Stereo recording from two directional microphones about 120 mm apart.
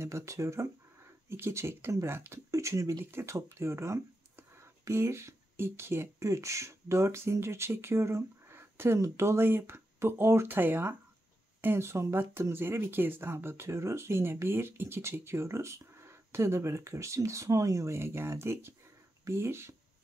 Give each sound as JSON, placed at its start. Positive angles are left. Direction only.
{"t": 0.0, "sound": "speech", "side_deg": -25}